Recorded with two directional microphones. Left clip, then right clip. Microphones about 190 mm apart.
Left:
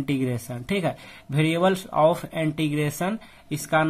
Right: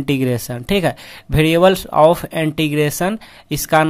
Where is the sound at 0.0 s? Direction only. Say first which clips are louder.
Right 8 dB; 30° right (ahead or behind).